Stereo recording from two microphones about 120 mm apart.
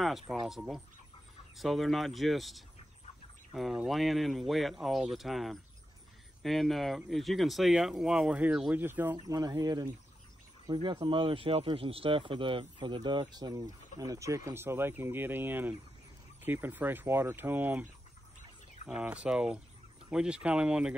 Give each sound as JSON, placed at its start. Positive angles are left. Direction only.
{"t": 0.3, "sound": "speech", "side_deg": 0}
{"t": 9.1, "sound": "speech", "side_deg": -35}
{"t": 18.9, "sound": "speech", "side_deg": -10}